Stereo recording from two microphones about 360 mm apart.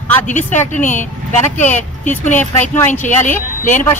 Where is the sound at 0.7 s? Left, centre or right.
Left.